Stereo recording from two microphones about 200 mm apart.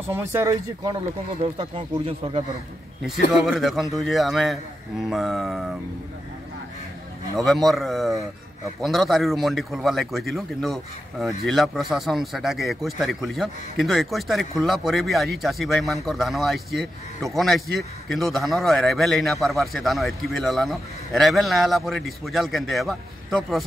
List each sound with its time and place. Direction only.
0.1 s speech: 10° right (ahead or behind)
1.4 s speech: 25° right (ahead or behind)
3.4 s a man's voice: centre (ahead or behind)
7.3 s a man's voice: centre (ahead or behind)